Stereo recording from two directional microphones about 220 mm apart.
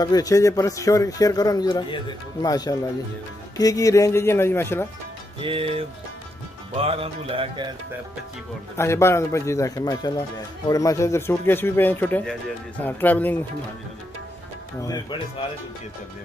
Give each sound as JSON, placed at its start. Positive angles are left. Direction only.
{"t": 0.0, "sound": "a man's voice", "side_deg": 15}
{"t": 5.4, "sound": "music", "side_deg": -25}
{"t": 8.7, "sound": "a man's voice", "side_deg": 10}
{"t": 14.8, "sound": "a man's voice", "side_deg": 15}